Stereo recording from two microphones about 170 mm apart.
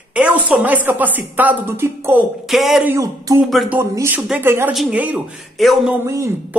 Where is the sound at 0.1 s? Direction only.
5° right (ahead or behind).